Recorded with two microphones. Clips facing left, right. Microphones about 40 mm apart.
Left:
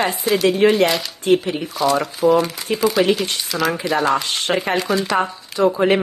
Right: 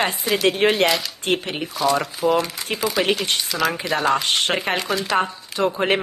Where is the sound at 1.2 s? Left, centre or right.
Right.